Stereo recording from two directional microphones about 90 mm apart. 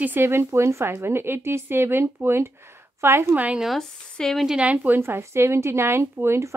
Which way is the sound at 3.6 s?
5° left (ahead or behind).